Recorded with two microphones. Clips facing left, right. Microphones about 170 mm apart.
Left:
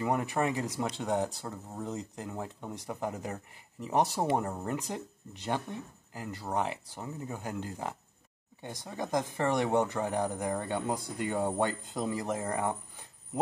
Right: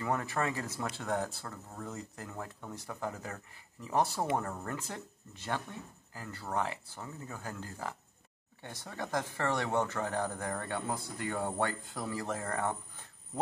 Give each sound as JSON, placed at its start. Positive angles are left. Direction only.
{"t": 0.0, "sound": "speech", "side_deg": 15}